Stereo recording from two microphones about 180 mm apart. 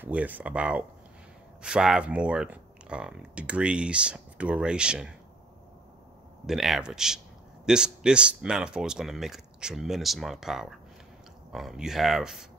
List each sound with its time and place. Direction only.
0.0 s speech: 10° right (ahead or behind)
6.4 s speech: centre (ahead or behind)